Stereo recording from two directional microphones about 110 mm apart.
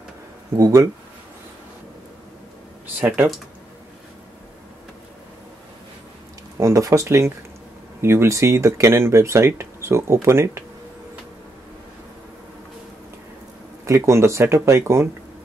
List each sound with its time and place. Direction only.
0.6 s speech: 30° right (ahead or behind)
6.6 s speech: 30° right (ahead or behind)
13.8 s speech: 25° right (ahead or behind)